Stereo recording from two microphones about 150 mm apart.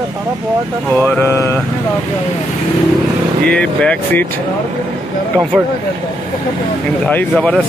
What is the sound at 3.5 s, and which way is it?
Speech, 5° left (ahead or behind).